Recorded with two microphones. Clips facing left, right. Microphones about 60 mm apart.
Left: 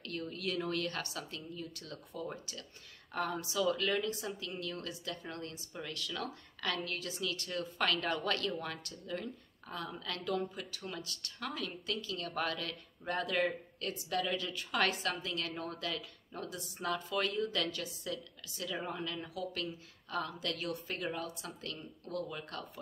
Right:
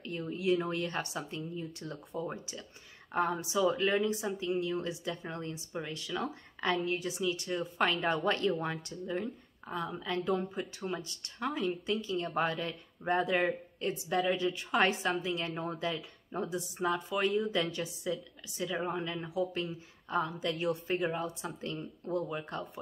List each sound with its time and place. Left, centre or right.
0.0 s a woman's voice: centre
10.0 s speech: right
19.0 s speech: right